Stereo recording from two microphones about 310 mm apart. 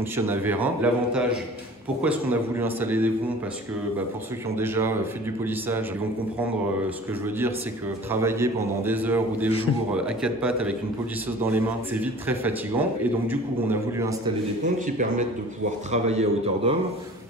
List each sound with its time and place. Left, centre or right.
0.1 s a man's voice: centre
4.6 s a man's voice: centre
8.1 s a man's voice: centre
14.6 s a man's voice: right